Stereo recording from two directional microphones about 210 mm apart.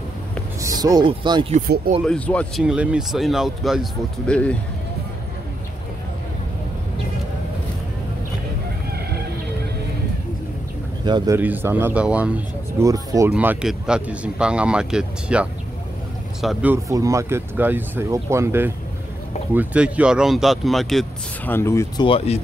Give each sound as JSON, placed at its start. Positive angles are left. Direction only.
{"t": 0.6, "sound": "speech", "side_deg": -15}
{"t": 2.0, "sound": "speech", "side_deg": 5}
{"t": 2.6, "sound": "speech", "side_deg": -5}
{"t": 11.1, "sound": "speech", "side_deg": -20}
{"t": 11.3, "sound": "speech", "side_deg": -10}
{"t": 16.7, "sound": "speech", "side_deg": -15}
{"t": 22.0, "sound": "speech", "side_deg": 30}